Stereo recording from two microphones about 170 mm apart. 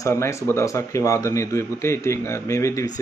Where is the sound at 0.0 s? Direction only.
15° left (ahead or behind).